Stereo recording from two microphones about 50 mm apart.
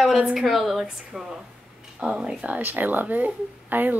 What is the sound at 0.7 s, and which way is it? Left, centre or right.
A woman's voice, centre.